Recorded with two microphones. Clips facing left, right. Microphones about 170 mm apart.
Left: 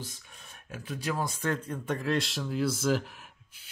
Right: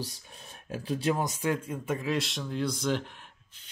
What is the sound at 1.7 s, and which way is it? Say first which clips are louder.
Speech: even; centre (ahead or behind).